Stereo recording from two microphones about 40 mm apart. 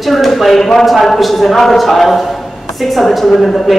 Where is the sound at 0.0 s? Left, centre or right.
Centre.